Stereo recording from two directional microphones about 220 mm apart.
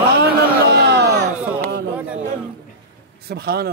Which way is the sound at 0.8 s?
50° right (ahead or behind).